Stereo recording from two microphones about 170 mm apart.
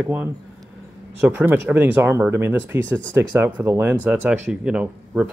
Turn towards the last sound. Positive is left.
turn(degrees=-5)  # may be behind; listen again after turning